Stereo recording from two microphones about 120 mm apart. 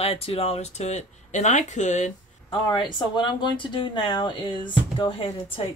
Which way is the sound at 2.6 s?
40° left (ahead or behind).